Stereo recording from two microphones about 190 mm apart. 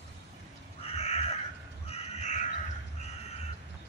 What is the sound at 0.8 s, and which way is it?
Crow, 30° left (ahead or behind).